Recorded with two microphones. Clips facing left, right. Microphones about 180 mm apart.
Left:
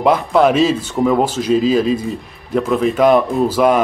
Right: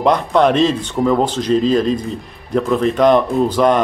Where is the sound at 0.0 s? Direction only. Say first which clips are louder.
Left 1 dB; 5° left (ahead or behind).